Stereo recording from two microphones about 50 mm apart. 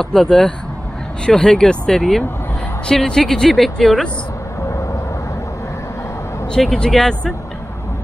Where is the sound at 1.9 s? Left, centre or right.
Centre.